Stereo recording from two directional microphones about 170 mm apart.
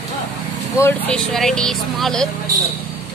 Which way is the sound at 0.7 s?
15° left (ahead or behind).